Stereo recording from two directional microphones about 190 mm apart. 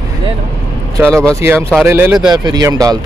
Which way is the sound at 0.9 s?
15° right (ahead or behind).